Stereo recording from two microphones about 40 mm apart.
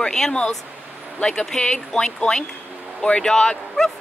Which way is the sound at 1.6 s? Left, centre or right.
Centre.